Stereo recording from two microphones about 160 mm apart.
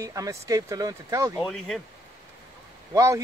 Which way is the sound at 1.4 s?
Centre (ahead or behind).